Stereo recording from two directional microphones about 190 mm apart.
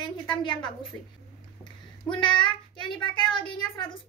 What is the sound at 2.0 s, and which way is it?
A woman's voice, 25° left (ahead or behind).